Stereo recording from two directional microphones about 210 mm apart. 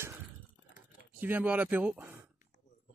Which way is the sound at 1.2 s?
10° right (ahead or behind).